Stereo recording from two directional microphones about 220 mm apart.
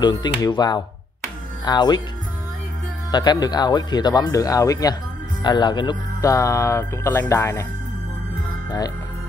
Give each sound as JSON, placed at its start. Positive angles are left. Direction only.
{"t": 0.0, "sound": "speech", "side_deg": 20}
{"t": 3.1, "sound": "speech", "side_deg": 20}
{"t": 8.6, "sound": "music", "side_deg": 15}